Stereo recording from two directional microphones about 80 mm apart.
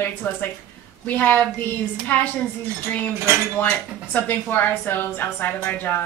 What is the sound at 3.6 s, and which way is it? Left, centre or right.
A woman's voice, left.